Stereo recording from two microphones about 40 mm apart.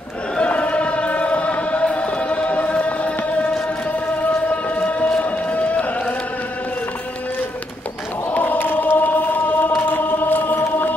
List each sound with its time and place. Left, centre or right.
0.5 s choir: left
4.5 s a sound: left
8.3 s choir: left